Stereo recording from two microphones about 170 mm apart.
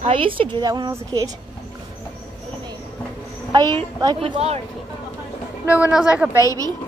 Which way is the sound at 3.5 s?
25° right (ahead or behind).